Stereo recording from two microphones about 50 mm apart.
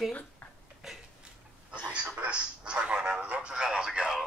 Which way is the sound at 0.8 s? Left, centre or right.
Centre.